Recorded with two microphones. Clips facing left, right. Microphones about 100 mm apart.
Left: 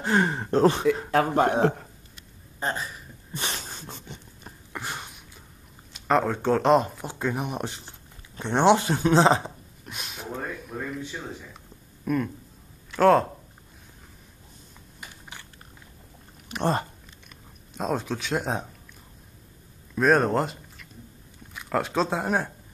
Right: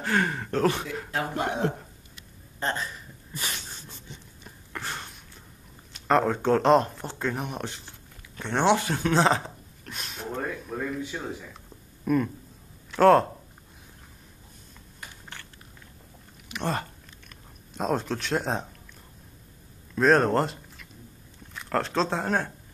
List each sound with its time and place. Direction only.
0.0 s speech: 25° left (ahead or behind)
1.3 s speech: 45° left (ahead or behind)
2.6 s speech: 10° left (ahead or behind)
3.3 s a sound: 25° left (ahead or behind)
3.6 s dog: 55° left (ahead or behind)
4.7 s a sound: 10° left (ahead or behind)
5.9 s speech: centre (ahead or behind)
12.0 s speech: centre (ahead or behind)
15.0 s typing: 15° left (ahead or behind)
16.4 s a sound: 40° left (ahead or behind)
17.3 s speech: centre (ahead or behind)
20.0 s speech: 5° left (ahead or behind)